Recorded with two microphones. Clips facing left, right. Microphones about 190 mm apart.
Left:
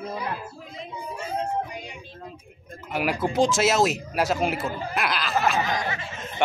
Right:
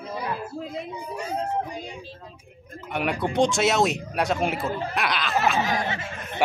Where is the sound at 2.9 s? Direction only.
5° left (ahead or behind).